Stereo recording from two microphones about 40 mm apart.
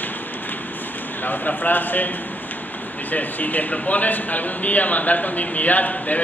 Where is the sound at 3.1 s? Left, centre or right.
Left.